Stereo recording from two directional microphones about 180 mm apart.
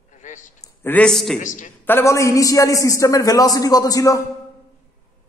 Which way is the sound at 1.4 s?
45° left (ahead or behind).